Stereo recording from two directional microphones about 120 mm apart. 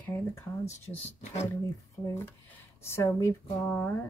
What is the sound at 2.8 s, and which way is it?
Speech, 20° left (ahead or behind).